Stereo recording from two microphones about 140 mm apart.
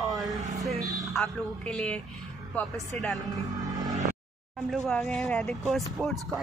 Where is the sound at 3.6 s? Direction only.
25° right (ahead or behind).